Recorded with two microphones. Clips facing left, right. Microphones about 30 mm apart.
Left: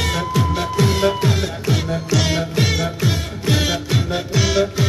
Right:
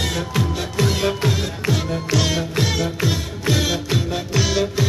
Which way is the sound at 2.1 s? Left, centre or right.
Centre.